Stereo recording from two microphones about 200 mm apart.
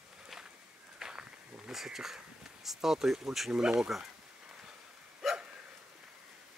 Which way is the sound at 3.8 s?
5° right (ahead or behind).